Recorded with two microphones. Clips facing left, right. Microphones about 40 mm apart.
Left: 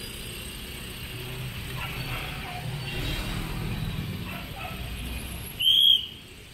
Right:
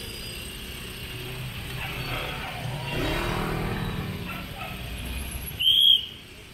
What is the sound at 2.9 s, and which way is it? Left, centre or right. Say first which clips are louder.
Vehicle: right 7 dB; right.